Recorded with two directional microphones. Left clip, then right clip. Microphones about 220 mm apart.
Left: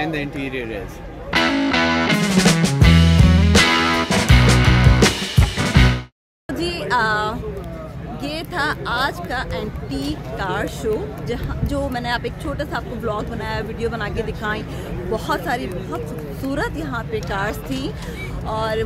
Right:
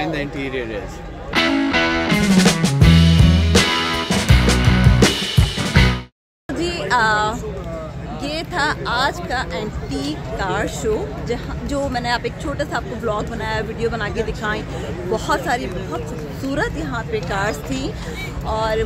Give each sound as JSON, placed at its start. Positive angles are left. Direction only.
{"t": 0.0, "sound": "a man's voice", "side_deg": 15}
{"t": 1.3, "sound": "music", "side_deg": 0}
{"t": 8.2, "sound": "speech", "side_deg": 0}
{"t": 15.1, "sound": "speech", "side_deg": 5}